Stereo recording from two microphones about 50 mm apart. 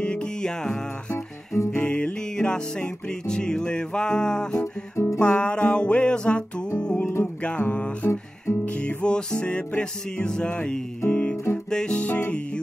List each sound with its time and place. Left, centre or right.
0.0 s music: centre
1.1 s music: left
1.8 s music: left
4.9 s music: left
5.2 s music: left
11.7 s music: centre